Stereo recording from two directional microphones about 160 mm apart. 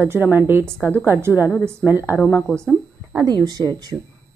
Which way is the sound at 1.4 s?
10° left (ahead or behind).